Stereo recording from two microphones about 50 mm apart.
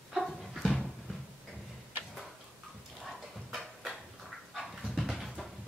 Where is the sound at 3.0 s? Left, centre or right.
Centre.